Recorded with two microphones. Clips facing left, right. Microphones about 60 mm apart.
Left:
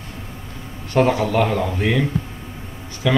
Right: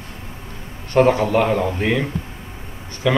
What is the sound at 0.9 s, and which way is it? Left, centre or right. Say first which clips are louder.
Speech: right 2 dB; centre.